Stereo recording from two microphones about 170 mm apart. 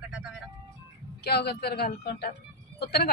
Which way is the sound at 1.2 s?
70° left (ahead or behind).